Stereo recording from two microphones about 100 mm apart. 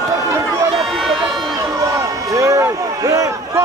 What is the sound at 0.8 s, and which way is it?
Run, centre (ahead or behind).